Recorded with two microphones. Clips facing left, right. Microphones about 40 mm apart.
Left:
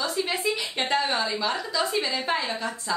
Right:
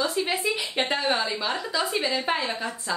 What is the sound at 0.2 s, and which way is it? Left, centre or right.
A woman's voice, centre.